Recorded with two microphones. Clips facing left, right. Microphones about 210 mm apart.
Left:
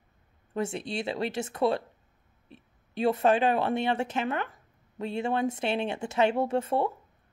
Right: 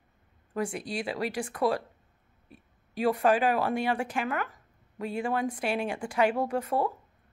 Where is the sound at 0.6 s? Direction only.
25° left (ahead or behind).